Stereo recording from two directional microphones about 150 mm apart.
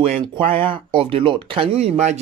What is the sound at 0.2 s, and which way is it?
Speech, 35° right (ahead or behind).